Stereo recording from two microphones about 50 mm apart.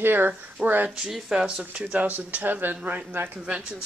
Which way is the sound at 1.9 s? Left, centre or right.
Right.